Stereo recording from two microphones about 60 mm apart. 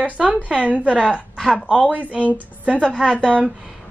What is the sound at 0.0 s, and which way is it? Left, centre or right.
Speech, right.